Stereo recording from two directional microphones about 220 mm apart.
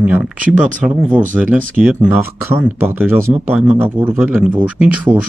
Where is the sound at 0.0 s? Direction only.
5° right (ahead or behind).